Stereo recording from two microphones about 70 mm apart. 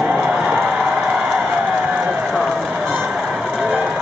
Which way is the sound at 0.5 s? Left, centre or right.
Centre.